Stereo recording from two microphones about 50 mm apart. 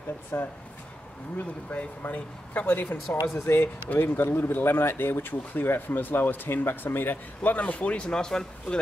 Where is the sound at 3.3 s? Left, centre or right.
Left.